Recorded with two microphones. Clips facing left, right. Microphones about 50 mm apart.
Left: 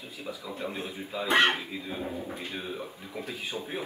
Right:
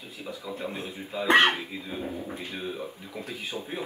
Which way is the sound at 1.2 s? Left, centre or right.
Right.